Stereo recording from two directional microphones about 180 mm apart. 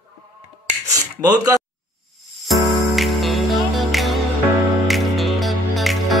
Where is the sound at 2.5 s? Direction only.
Centre (ahead or behind).